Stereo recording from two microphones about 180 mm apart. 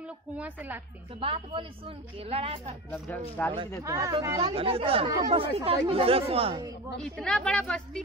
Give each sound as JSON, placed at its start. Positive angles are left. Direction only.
{"t": 0.4, "sound": "speech", "side_deg": -10}
{"t": 1.2, "sound": "speech", "side_deg": -30}
{"t": 2.9, "sound": "speech", "side_deg": 10}
{"t": 3.8, "sound": "speech", "side_deg": -15}
{"t": 4.4, "sound": "speech", "side_deg": -30}
{"t": 7.0, "sound": "a woman's voice", "side_deg": 5}